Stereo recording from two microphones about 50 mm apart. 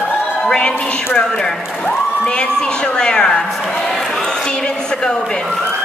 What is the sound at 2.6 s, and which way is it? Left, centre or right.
Speech, centre.